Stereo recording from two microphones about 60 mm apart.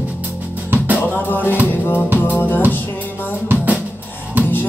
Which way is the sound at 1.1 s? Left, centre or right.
Left.